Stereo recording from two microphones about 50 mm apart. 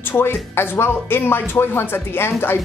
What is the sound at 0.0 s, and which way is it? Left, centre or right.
Speech, left.